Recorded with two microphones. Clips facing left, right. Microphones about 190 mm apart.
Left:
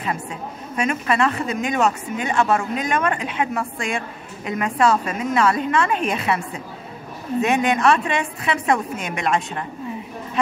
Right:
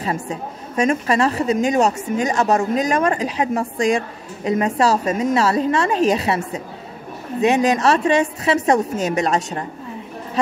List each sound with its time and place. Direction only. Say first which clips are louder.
0.0 s a woman's voice: right 3 dB; 35° right (ahead or behind)